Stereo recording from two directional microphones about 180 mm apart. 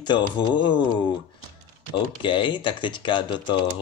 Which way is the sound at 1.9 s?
25° left (ahead or behind).